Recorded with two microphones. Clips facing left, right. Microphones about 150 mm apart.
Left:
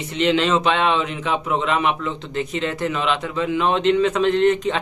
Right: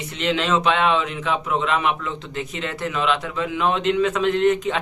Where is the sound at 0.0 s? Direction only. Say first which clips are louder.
Left 4 dB; centre (ahead or behind).